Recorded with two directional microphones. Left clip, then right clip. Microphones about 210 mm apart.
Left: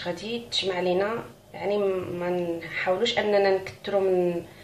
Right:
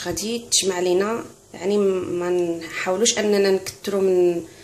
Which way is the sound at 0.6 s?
55° right (ahead or behind).